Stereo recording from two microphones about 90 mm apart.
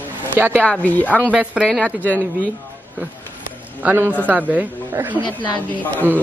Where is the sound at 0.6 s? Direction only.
15° left (ahead or behind).